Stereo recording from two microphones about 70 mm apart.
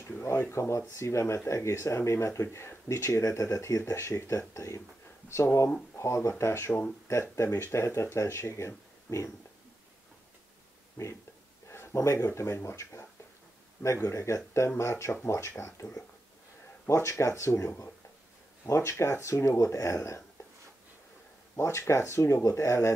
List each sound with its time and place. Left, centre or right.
0.2 s speech: left
11.0 s speech: left
11.7 s a sound: left
12.2 s speech: left
14.0 s speech: left
18.8 s speech: left
21.5 s speech: left